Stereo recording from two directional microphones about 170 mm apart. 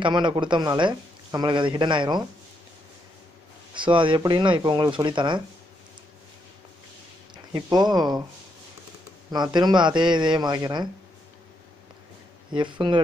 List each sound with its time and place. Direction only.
0.0 s speech: 30° right (ahead or behind)
3.7 s speech: 30° right (ahead or behind)
7.5 s speech: 25° right (ahead or behind)
9.3 s speech: 25° right (ahead or behind)
12.5 s speech: 30° right (ahead or behind)